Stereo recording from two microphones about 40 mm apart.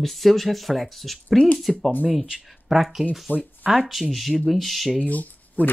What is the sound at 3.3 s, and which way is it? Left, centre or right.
Speech, left.